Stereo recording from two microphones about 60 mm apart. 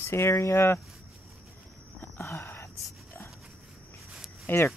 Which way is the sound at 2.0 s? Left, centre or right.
Left.